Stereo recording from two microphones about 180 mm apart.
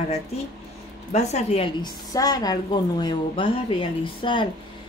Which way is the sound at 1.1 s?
35° left (ahead or behind).